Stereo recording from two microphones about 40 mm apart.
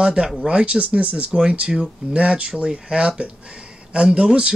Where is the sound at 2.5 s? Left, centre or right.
Centre.